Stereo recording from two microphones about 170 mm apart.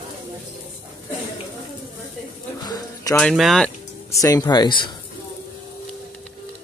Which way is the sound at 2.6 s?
25° left (ahead or behind).